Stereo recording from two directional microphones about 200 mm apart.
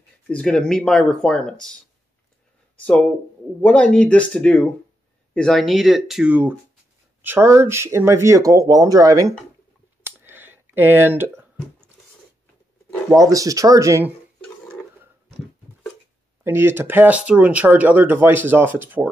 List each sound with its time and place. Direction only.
0.3 s speech: 5° left (ahead or behind)
2.8 s speech: 5° left (ahead or behind); by 9.3 s 15° right (ahead or behind)
10.2 s a sound: 10° right (ahead or behind)
13.1 s speech: 15° right (ahead or behind)
16.4 s speech: 10° right (ahead or behind)